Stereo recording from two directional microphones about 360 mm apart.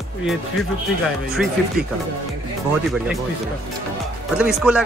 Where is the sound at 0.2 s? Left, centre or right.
Centre.